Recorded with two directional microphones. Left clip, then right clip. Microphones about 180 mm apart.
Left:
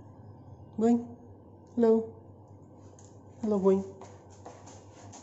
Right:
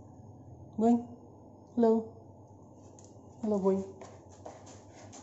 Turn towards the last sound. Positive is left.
turn(degrees=15)  # may be behind; listen again after turning